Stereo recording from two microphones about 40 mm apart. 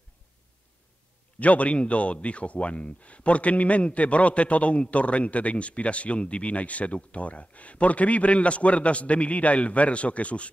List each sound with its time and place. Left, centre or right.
1.4 s speech: left